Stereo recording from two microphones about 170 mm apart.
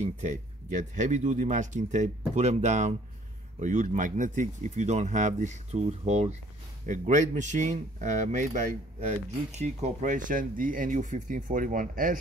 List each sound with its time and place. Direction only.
0.0 s speech: 45° right (ahead or behind)